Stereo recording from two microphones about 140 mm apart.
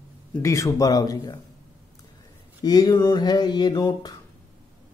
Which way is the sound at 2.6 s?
30° left (ahead or behind).